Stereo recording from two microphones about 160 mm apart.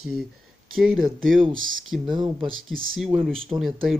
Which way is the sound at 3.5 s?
30° right (ahead or behind).